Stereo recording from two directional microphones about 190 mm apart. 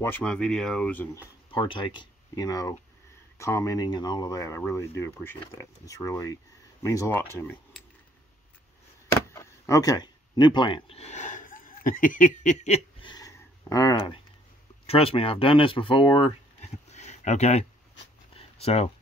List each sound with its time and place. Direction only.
0.0 s speech: 10° left (ahead or behind)
1.5 s speech: 25° left (ahead or behind)
9.3 s speech: 15° left (ahead or behind); by 13.1 s 35° left (ahead or behind)
13.1 s a sound: 15° left (ahead or behind)
14.9 s speech: 30° left (ahead or behind)
18.3 s a sound: 35° left (ahead or behind)